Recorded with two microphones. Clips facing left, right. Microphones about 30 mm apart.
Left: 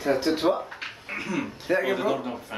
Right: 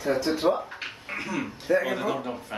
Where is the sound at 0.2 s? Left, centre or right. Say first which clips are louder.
Left 1 dB; left.